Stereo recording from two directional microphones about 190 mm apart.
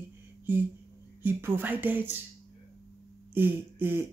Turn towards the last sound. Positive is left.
turn(degrees=-10)  # may be behind; listen again after turning